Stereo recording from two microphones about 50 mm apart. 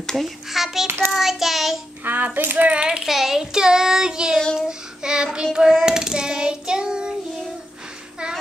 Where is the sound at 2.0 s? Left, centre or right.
Right.